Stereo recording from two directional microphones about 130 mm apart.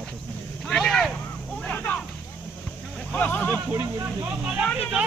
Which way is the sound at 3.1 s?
15° left (ahead or behind).